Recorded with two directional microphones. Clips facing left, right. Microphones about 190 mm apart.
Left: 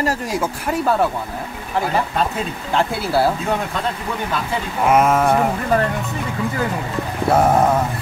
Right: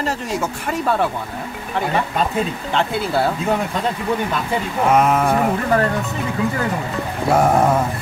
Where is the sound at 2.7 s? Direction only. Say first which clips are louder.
Even; 5° left (ahead or behind).